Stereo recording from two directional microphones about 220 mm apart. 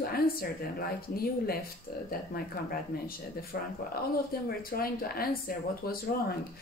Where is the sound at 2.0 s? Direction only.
40° left (ahead or behind).